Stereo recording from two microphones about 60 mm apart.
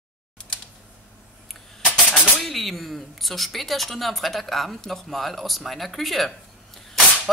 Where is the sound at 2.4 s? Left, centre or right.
Centre.